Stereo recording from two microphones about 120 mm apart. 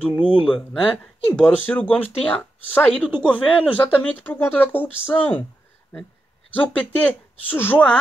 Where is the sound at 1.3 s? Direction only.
10° left (ahead or behind).